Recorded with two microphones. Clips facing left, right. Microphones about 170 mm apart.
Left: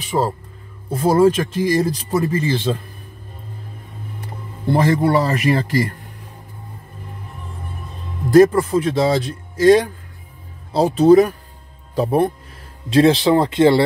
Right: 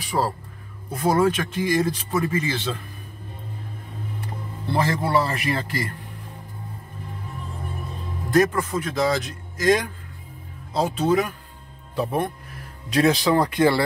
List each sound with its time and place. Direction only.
0.0 s speech: 25° left (ahead or behind)
4.6 s speech: 40° left (ahead or behind)
8.3 s speech: 30° left (ahead or behind)